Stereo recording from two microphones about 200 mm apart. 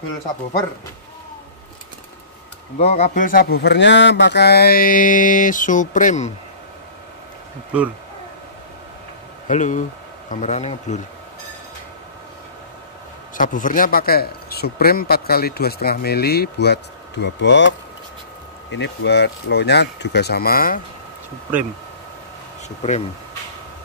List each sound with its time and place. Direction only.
2.8 s speech: 35° left (ahead or behind)
9.5 s speech: 40° left (ahead or behind)
13.4 s speech: 40° left (ahead or behind)
22.8 s speech: 35° left (ahead or behind)